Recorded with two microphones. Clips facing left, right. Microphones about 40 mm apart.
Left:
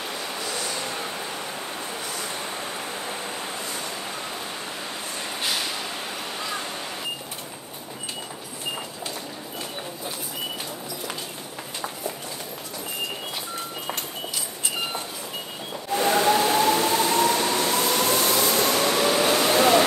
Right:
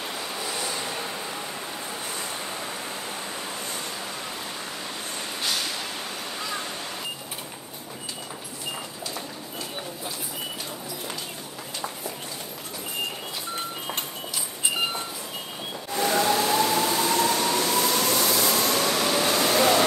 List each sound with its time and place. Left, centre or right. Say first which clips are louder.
5.4 s vehicle: left 1 dB; centre
15.9 s train: left 3 dB; centre
18.7 s subway: left 2 dB; centre